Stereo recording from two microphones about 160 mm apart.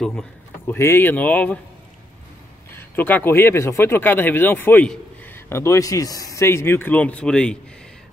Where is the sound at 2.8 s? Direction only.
10° left (ahead or behind).